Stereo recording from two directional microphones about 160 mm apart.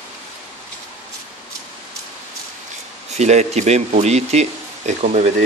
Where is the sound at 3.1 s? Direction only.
45° right (ahead or behind).